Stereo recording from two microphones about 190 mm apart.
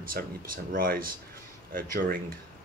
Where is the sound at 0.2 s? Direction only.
50° right (ahead or behind).